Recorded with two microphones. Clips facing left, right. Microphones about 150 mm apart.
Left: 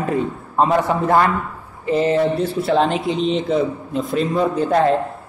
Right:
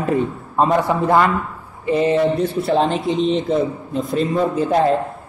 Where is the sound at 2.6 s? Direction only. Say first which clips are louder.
Left 1 dB; centre (ahead or behind).